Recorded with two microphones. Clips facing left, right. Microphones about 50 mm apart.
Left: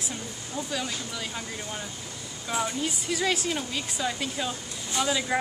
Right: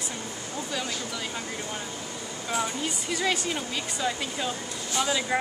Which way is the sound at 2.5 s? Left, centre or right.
Centre.